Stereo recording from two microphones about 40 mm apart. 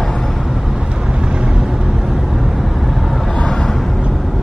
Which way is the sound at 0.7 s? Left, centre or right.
Right.